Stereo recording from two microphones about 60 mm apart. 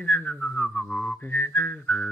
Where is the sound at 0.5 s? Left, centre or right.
Centre.